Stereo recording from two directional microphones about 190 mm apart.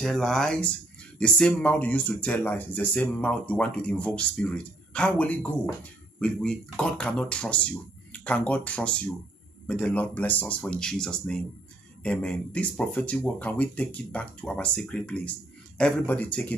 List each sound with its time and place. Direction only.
0.0 s speech: centre (ahead or behind)